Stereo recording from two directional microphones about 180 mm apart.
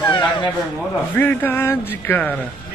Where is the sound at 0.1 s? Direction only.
25° left (ahead or behind).